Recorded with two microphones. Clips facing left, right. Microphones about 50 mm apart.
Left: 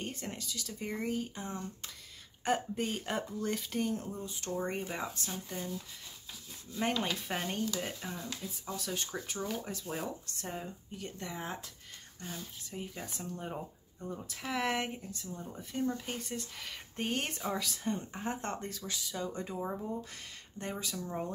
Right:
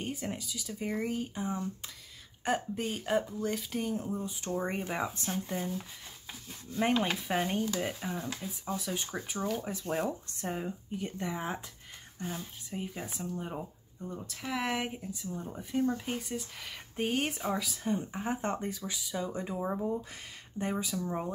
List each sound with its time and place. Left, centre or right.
0.0 s speech: centre
5.2 s speech: right
7.2 s speech: centre
8.3 s speech: right
9.8 s speech: right
10.2 s speech: right
13.1 s speech: centre